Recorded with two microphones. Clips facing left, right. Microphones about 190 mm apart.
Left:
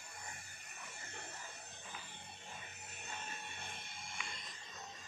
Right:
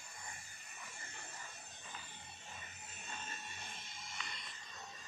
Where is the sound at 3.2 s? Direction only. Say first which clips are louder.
Left 1 dB; 60° left (ahead or behind).